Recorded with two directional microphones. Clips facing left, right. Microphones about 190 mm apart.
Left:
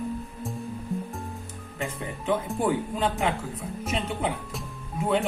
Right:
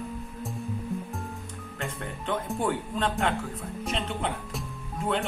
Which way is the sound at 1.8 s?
Centre (ahead or behind).